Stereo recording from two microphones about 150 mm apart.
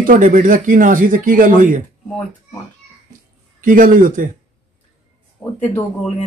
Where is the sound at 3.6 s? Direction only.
65° right (ahead or behind).